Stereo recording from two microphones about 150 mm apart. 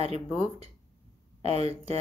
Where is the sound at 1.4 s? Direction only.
40° right (ahead or behind).